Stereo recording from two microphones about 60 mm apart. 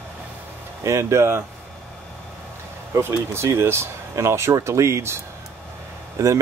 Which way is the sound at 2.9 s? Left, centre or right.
Right.